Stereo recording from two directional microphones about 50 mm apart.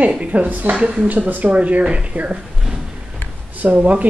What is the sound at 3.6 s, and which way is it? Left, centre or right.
Speech, right.